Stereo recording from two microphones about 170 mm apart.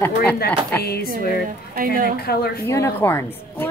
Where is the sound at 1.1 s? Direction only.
60° right (ahead or behind).